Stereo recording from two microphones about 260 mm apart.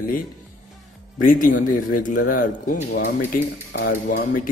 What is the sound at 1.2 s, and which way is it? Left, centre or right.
Speech, left.